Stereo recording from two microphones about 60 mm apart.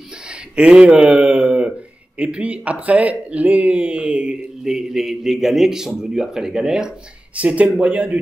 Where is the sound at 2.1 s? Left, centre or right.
Right.